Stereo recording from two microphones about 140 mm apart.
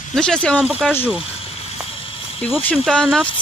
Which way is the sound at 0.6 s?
5° right (ahead or behind).